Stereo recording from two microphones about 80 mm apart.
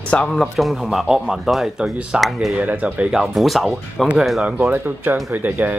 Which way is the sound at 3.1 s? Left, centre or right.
Centre.